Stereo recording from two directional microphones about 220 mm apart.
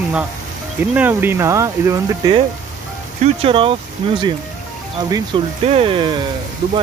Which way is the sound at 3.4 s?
25° right (ahead or behind).